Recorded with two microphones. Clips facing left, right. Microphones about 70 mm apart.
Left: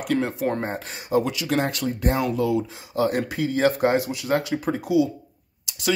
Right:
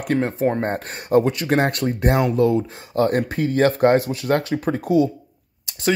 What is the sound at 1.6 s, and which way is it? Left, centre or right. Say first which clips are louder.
Speech: right 4 dB; right.